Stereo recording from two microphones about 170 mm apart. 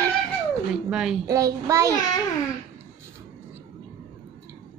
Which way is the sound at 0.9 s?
5° right (ahead or behind).